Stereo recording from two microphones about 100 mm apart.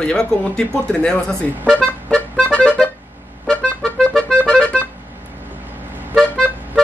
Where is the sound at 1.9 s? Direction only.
10° left (ahead or behind).